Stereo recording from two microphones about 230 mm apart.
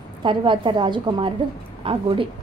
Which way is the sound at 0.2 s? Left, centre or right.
Right.